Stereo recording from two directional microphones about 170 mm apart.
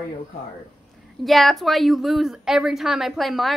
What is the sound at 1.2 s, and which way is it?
A woman's voice, centre (ahead or behind).